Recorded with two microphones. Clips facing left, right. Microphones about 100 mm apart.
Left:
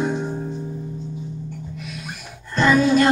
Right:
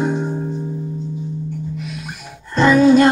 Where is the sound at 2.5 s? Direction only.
25° right (ahead or behind).